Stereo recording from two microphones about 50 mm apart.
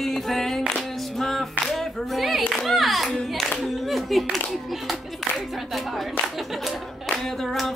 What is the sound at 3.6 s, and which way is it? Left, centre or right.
Music, centre.